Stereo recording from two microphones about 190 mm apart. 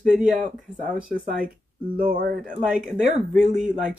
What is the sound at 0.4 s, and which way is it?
Speech, 45° right (ahead or behind).